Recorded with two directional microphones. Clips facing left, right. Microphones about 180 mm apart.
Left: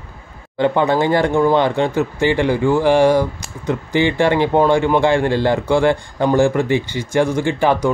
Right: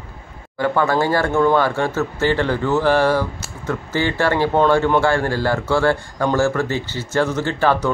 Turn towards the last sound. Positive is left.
turn(degrees=15)  # may be behind; listen again after turning